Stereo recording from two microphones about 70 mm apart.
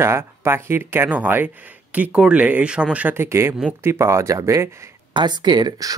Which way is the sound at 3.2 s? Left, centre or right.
Right.